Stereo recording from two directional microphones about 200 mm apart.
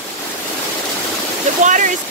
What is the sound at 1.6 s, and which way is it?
Speech, 40° right (ahead or behind).